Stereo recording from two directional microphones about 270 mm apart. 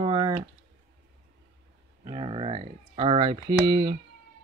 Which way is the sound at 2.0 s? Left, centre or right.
Right.